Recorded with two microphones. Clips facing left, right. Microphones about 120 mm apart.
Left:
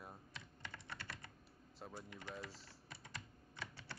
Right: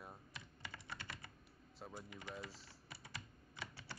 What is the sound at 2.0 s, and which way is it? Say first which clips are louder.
Speech: even; 10° right (ahead or behind).